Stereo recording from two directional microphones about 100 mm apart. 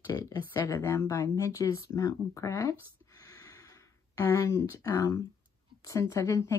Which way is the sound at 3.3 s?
35° left (ahead or behind).